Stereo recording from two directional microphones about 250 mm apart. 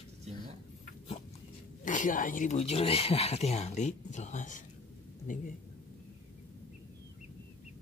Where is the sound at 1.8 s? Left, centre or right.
Left.